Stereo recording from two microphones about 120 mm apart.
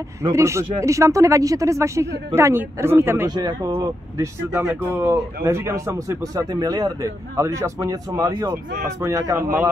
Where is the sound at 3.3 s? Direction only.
35° right (ahead or behind).